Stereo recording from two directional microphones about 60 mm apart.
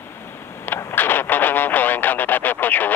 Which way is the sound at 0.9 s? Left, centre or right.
Left.